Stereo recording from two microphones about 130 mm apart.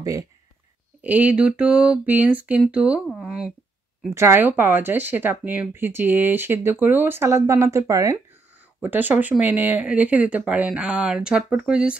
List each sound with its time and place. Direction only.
1.0 s speech: 10° right (ahead or behind)
4.1 s speech: 20° right (ahead or behind)